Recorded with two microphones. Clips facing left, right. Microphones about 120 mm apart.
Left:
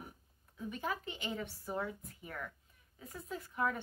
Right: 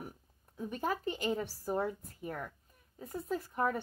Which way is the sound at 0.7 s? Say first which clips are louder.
Right 5 dB; 45° right (ahead or behind).